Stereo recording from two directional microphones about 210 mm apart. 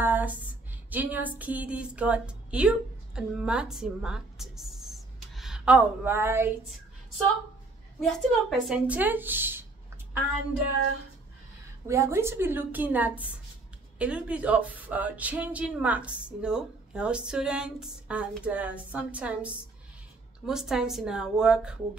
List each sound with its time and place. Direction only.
0.0 s a sound: 10° right (ahead or behind)
0.8 s a woman's voice: 10° right (ahead or behind)
8.0 s speech: centre (ahead or behind)
11.9 s speech: 15° right (ahead or behind)